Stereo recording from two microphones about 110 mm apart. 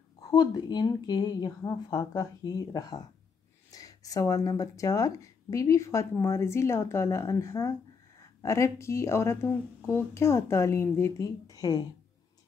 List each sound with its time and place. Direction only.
0.2 s a woman's voice: 35° left (ahead or behind)